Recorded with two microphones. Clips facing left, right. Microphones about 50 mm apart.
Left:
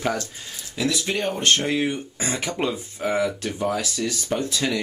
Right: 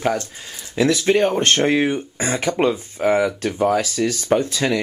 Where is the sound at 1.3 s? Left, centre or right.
Right.